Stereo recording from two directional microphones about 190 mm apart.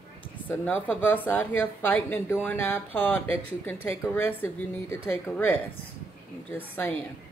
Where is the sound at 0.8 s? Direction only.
10° left (ahead or behind).